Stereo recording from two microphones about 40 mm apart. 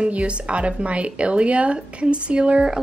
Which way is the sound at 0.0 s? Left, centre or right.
Right.